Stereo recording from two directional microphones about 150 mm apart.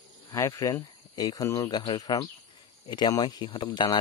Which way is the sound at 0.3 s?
20° left (ahead or behind).